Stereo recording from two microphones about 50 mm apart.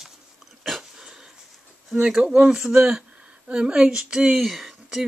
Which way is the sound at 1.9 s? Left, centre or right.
Centre.